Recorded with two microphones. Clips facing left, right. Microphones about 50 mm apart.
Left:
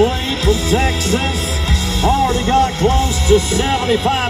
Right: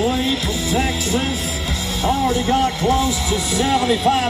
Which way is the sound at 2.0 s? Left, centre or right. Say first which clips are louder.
Left 3 dB; left.